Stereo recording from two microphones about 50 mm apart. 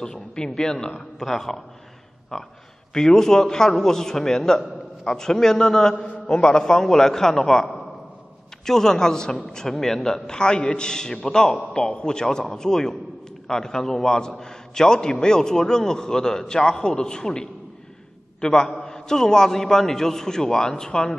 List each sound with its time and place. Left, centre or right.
0.0 s a man's voice: centre
5.9 s a man's voice: left
7.3 s a man's voice: centre
8.6 s a man's voice: centre